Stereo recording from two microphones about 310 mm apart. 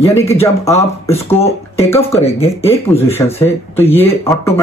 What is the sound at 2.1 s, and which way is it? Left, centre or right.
Speech, centre.